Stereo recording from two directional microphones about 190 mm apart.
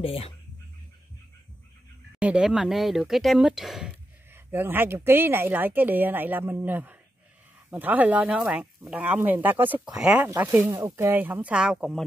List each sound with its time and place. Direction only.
0.0 s speech: 30° left (ahead or behind)
2.1 s speech: 5° right (ahead or behind)